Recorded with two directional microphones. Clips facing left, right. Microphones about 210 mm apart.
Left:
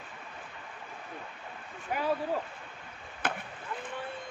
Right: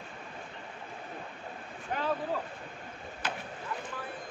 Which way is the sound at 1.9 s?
10° left (ahead or behind).